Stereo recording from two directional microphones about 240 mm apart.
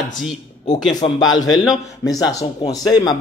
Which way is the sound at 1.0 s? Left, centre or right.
Centre.